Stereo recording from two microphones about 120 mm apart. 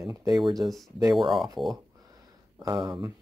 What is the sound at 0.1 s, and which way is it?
Speech, 30° right (ahead or behind).